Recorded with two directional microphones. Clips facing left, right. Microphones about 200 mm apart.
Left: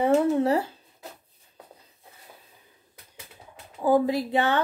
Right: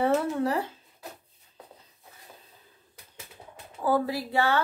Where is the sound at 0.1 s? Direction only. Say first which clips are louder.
Left 5 dB; 20° left (ahead or behind).